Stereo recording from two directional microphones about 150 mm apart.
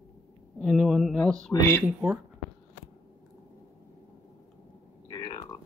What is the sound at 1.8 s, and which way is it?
Speech, 10° right (ahead or behind).